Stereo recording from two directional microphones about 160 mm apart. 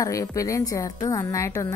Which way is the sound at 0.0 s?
20° left (ahead or behind).